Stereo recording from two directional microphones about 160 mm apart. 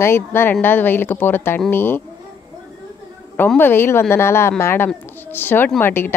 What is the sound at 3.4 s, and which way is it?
A woman's voice, 10° left (ahead or behind).